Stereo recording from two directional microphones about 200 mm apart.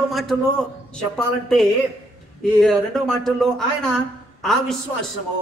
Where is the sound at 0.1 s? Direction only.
Centre (ahead or behind).